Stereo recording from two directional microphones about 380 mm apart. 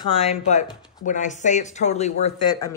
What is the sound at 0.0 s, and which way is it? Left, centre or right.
Speech, centre.